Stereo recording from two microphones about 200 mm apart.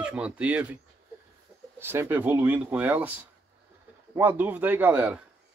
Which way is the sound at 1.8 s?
10° right (ahead or behind).